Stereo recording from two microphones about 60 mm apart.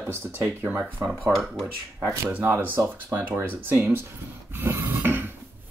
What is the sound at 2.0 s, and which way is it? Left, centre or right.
Speech, right.